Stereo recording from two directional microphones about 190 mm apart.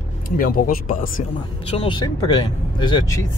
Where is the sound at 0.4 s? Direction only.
50° left (ahead or behind).